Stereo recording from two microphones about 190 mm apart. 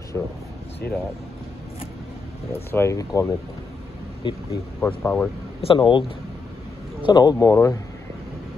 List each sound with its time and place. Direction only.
0.1 s speech: 10° left (ahead or behind)
2.5 s speech: 10° left (ahead or behind)
4.7 s speech: 10° left (ahead or behind)
5.6 s speech: 25° left (ahead or behind)